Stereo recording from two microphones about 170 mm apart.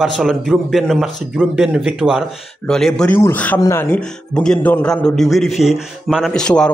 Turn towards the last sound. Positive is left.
turn(degrees=0)  # may be behind; listen again after turning